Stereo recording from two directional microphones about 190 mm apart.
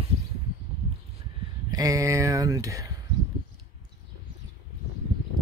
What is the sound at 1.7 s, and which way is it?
Speech, 20° right (ahead or behind).